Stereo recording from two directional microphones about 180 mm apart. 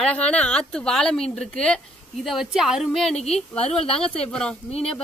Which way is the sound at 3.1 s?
35° left (ahead or behind).